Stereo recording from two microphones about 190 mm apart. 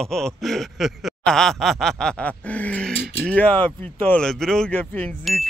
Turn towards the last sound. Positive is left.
turn(degrees=5)  # may be behind; listen again after turning